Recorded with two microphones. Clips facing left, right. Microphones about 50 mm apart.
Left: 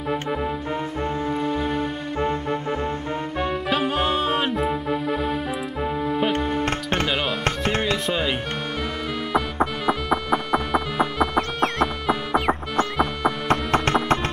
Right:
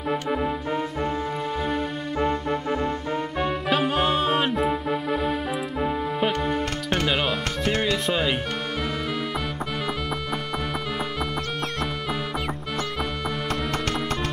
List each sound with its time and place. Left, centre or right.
0.1 s music: centre
3.3 s music: centre
7.4 s music: left
8.1 s speech: centre
9.8 s music: centre
13.5 s music: left